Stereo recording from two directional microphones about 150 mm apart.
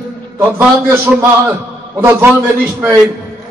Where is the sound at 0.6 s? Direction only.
10° right (ahead or behind).